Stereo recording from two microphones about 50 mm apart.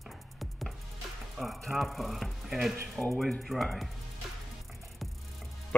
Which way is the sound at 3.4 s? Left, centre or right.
Centre.